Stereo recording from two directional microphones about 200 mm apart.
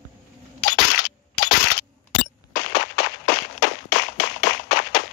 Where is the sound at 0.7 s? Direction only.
90° left.